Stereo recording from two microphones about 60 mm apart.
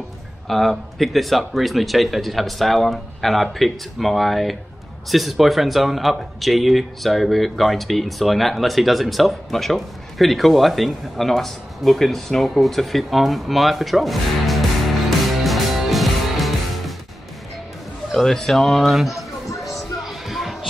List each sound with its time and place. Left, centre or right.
0.5 s speech: centre
18.1 s speech: centre
19.4 s music: left
19.7 s music: centre